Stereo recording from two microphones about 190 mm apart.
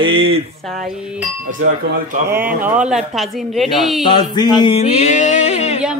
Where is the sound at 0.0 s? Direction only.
30° right (ahead or behind).